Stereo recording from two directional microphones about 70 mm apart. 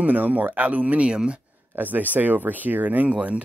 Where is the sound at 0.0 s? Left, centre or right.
Right.